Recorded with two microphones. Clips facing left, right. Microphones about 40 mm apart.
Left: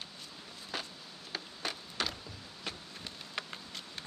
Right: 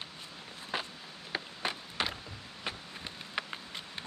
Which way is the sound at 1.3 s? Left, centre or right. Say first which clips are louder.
Right 4 dB; right.